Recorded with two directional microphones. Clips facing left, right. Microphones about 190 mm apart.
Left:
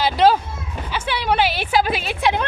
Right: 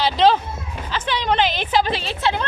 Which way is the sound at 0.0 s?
10° left (ahead or behind).